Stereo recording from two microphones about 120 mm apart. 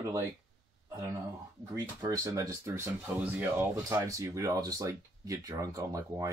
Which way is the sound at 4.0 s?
30° right (ahead or behind).